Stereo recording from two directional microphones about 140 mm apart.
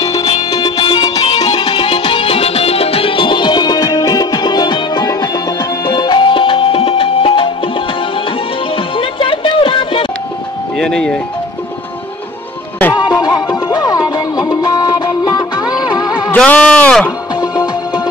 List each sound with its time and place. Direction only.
0.0 s music: 25° left (ahead or behind)
1.1 s music: 45° left (ahead or behind)
8.7 s music: 40° left (ahead or behind)
10.8 s speech: 5° left (ahead or behind)
12.9 s music: 30° left (ahead or behind)
16.3 s a sound: 10° left (ahead or behind)
17.4 s music: 30° left (ahead or behind)